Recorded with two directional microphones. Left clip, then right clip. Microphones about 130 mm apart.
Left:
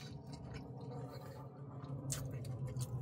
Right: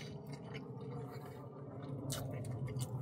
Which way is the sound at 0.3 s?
20° right (ahead or behind).